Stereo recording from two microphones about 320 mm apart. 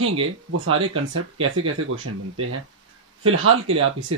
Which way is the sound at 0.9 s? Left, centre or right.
Right.